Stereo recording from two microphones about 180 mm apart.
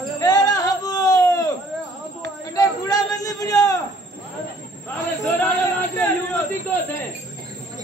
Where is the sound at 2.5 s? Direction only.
20° left (ahead or behind).